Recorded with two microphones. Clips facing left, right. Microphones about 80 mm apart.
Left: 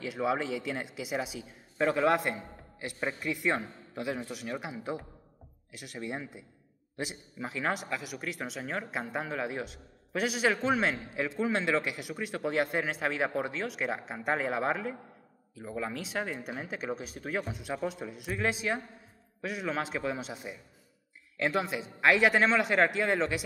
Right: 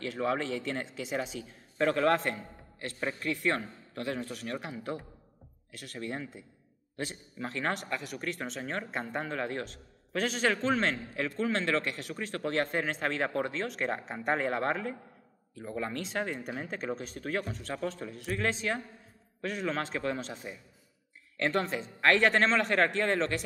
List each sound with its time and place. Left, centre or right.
0.0 s speech: centre